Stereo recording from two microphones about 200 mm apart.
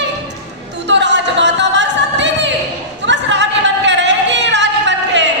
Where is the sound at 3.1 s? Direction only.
65° right (ahead or behind).